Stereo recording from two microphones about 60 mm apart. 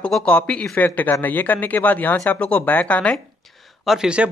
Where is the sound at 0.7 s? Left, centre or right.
Left.